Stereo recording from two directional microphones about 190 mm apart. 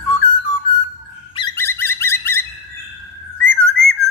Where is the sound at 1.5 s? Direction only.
10° left (ahead or behind).